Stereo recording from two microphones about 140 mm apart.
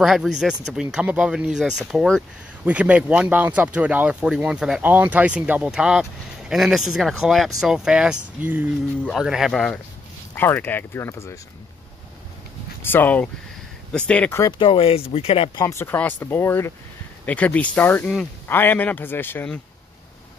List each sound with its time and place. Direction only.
0.0 s speech: 5° right (ahead or behind)
9.0 s speech: centre (ahead or behind); by 11.3 s 20° left (ahead or behind)
12.8 s speech: 15° left (ahead or behind)
14.6 s speech: 40° left (ahead or behind)
15.8 s speech: 15° left (ahead or behind)